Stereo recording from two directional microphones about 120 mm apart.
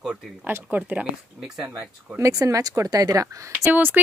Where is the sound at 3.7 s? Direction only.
15° right (ahead or behind).